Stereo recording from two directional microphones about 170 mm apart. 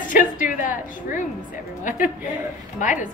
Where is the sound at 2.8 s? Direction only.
50° left (ahead or behind).